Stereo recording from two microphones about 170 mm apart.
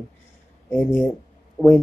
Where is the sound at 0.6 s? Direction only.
10° left (ahead or behind).